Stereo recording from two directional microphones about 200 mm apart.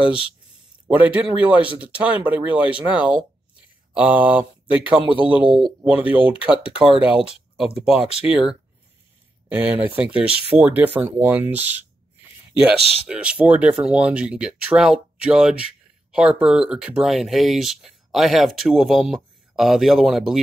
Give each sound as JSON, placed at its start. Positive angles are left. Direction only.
{"t": 0.8, "sound": "speech", "side_deg": -10}
{"t": 5.0, "sound": "a man's voice", "side_deg": -25}
{"t": 5.6, "sound": "speech", "side_deg": -10}
{"t": 13.1, "sound": "speech", "side_deg": -5}